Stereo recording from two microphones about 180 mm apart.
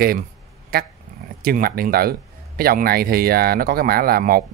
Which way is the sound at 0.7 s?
60° right (ahead or behind).